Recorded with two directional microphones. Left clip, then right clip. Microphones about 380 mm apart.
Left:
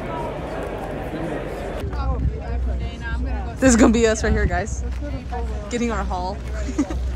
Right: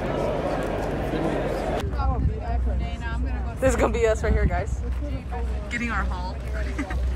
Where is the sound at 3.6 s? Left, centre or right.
Left.